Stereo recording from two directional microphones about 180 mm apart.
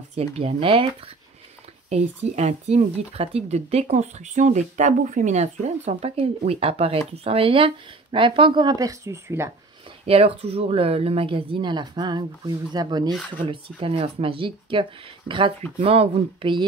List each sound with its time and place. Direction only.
0.1 s speech: 35° right (ahead or behind)
1.9 s speech: 35° right (ahead or behind); by 9.5 s 15° right (ahead or behind)
10.0 s speech: 35° right (ahead or behind)